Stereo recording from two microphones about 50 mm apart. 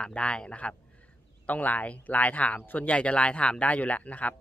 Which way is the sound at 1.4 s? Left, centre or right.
Left.